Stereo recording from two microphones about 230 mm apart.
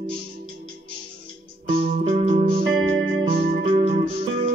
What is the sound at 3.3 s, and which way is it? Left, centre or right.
Music, right.